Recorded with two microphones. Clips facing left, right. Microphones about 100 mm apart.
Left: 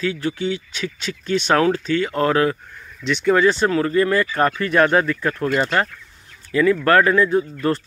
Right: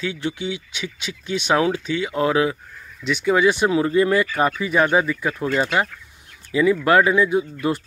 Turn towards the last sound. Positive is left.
turn(degrees=-10)  # may be behind; listen again after turning